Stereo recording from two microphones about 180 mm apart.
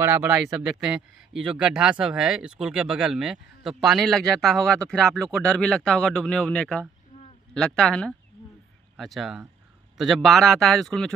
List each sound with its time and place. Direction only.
0.0 s speech: 10° right (ahead or behind)